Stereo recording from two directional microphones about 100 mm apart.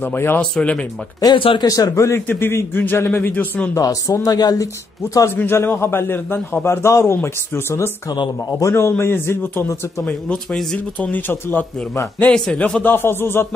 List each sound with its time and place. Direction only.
0.0 s a man's voice: 20° left (ahead or behind)
0.4 s a man's voice: 10° left (ahead or behind)
1.2 s speech: 55° left (ahead or behind)
1.7 s a man's voice: 35° left (ahead or behind); by 3.7 s 15° left (ahead or behind)
3.7 s speech: 35° left (ahead or behind)
5.3 s a man's voice: 20° left (ahead or behind)
8.1 s speech: 40° left (ahead or behind)
8.6 s a man's voice: 25° left (ahead or behind)
10.0 s a man's voice: 10° left (ahead or behind)
12.3 s a man's voice: 10° left (ahead or behind)